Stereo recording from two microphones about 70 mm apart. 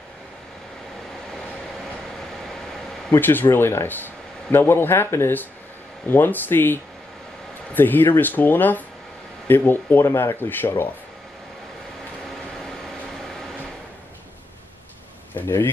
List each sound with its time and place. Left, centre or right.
3.1 s speech: left
12.3 s air conditioning: centre
15.4 s speech: left